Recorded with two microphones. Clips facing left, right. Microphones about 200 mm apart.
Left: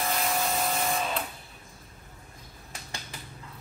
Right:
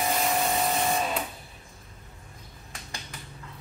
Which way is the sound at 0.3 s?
Centre (ahead or behind).